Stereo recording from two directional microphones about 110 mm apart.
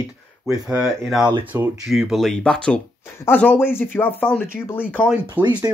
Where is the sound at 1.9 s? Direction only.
5° right (ahead or behind); by 5.0 s 20° left (ahead or behind).